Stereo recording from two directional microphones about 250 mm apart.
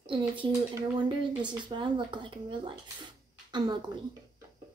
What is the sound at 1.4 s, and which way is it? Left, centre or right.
A woman's voice, centre.